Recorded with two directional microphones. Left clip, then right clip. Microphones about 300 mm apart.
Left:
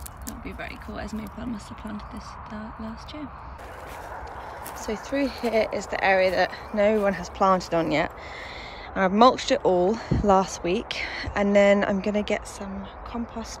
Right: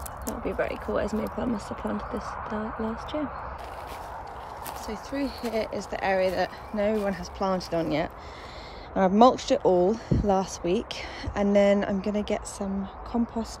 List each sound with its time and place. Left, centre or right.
0.4 s speech: centre
4.8 s speech: centre